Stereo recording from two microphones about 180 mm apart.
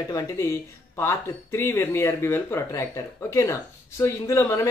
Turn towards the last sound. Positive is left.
turn(degrees=15)  # may be behind; listen again after turning